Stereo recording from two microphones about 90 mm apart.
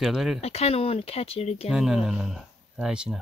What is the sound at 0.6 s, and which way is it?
Speech, 90° left.